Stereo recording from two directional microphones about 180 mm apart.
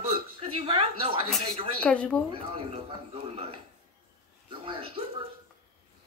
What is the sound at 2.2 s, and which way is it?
A child's voice, 30° right (ahead or behind).